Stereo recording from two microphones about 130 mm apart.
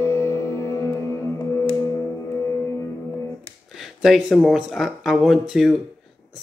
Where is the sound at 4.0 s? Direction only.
Centre (ahead or behind).